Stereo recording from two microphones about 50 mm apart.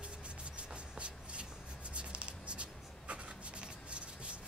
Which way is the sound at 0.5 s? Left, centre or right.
Right.